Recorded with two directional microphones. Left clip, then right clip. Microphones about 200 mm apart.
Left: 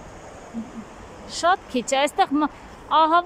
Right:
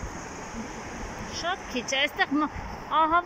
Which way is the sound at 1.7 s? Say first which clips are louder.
Left 6 dB; 75° left (ahead or behind).